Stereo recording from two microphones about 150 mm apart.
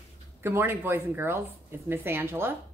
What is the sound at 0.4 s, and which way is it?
Speech, 15° right (ahead or behind).